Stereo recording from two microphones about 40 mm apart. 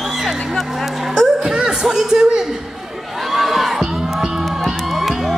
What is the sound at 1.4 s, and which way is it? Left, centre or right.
Music, centre.